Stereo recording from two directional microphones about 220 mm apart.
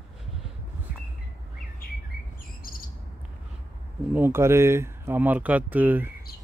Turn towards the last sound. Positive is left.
turn(degrees=-10)  # may be behind; listen again after turning